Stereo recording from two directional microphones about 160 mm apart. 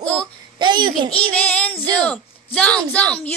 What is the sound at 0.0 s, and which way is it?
Babbling, 5° left (ahead or behind).